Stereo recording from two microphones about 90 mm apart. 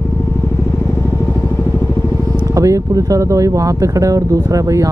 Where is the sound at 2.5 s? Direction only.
35° right (ahead or behind).